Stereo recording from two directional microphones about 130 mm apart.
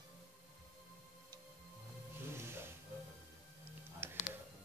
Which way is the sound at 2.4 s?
20° right (ahead or behind).